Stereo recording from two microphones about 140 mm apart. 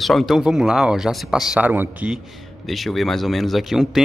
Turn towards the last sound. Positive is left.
turn(degrees=0)  # may be behind; listen again after turning